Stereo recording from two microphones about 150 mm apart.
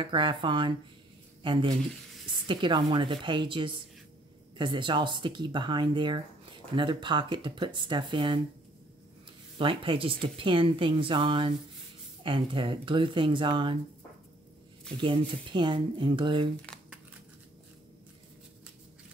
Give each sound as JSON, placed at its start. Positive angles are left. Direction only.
{"t": 0.0, "sound": "speech", "side_deg": -30}
{"t": 9.6, "sound": "speech", "side_deg": -35}
{"t": 15.0, "sound": "speech", "side_deg": -30}